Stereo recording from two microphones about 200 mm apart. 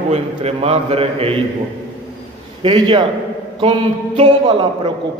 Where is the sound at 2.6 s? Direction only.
25° right (ahead or behind).